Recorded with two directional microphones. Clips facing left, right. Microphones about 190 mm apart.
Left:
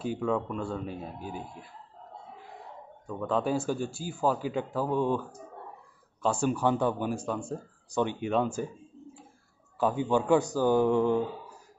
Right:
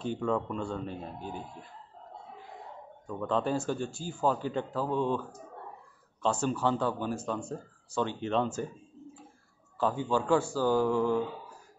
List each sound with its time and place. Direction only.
0.0 s speech: 5° left (ahead or behind)
3.1 s speech: 5° left (ahead or behind)
6.2 s speech: 10° left (ahead or behind)
9.8 s speech: 15° left (ahead or behind)